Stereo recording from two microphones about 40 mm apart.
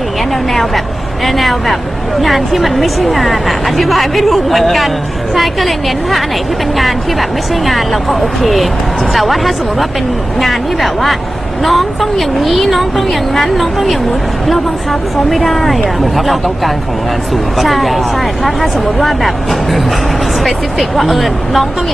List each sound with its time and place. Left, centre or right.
0.5 s speech: centre